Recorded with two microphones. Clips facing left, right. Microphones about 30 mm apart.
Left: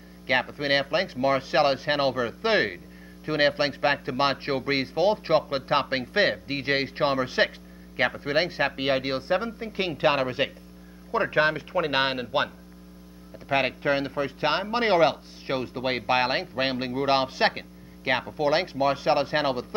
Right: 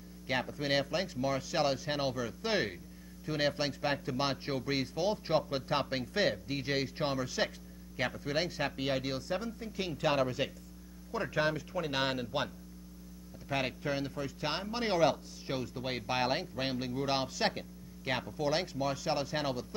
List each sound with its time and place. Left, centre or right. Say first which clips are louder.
0.3 s speech: left 9 dB; left
13.5 s speech: left 10 dB; left